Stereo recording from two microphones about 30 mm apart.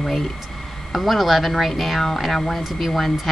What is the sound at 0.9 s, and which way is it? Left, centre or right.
Speech, centre.